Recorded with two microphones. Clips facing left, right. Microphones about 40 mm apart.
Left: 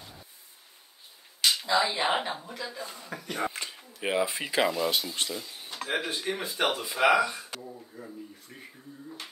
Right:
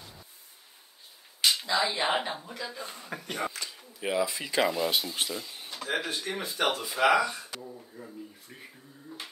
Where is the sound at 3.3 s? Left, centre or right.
Left.